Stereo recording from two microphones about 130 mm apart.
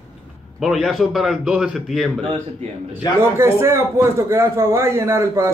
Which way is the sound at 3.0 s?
30° left (ahead or behind).